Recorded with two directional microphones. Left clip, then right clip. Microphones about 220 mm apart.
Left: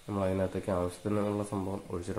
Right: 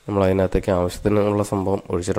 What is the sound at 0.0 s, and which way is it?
Speech, 45° right (ahead or behind).